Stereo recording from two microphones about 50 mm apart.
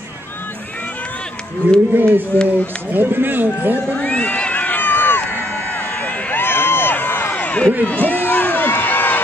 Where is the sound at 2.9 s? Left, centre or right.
Right.